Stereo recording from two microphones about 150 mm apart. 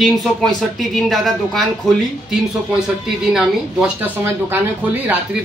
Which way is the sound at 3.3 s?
5° right (ahead or behind).